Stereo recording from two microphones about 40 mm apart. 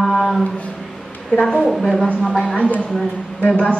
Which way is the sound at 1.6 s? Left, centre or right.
Centre.